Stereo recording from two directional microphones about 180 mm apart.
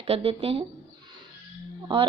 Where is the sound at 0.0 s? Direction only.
35° right (ahead or behind).